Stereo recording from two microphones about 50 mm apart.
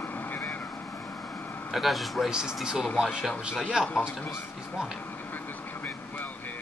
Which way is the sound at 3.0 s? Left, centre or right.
Centre.